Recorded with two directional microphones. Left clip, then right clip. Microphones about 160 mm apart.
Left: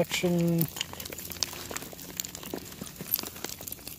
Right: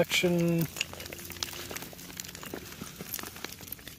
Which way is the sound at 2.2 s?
75° left (ahead or behind).